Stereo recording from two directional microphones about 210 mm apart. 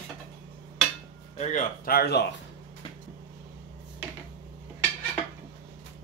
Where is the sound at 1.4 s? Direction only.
40° left (ahead or behind).